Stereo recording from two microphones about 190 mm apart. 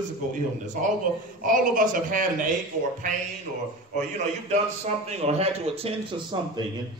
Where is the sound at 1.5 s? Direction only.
45° right (ahead or behind).